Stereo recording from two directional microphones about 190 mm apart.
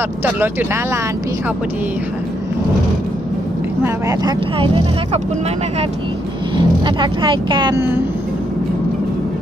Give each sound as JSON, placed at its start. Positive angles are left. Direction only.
{"t": 0.2, "sound": "speech", "side_deg": -10}
{"t": 3.8, "sound": "speech", "side_deg": -20}
{"t": 6.5, "sound": "speech", "side_deg": -25}